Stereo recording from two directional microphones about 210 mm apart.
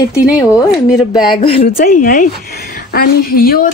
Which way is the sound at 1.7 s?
45° left (ahead or behind).